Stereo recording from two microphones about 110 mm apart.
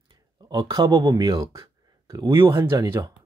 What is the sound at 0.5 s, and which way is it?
Speech, 35° right (ahead or behind).